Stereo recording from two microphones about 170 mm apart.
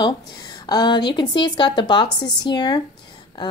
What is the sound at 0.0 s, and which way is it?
A woman's voice, 25° left (ahead or behind).